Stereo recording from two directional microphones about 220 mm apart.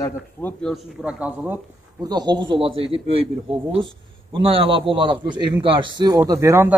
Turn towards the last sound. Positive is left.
turn(degrees=-10)  # may be behind; listen again after turning